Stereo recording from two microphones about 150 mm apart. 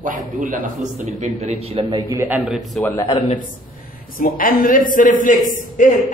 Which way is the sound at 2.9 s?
20° left (ahead or behind).